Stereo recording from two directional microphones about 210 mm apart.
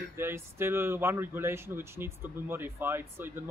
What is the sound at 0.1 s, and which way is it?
Speech, 10° right (ahead or behind).